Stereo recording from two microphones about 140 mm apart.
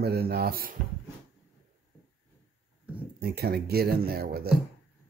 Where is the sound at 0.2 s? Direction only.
90° right.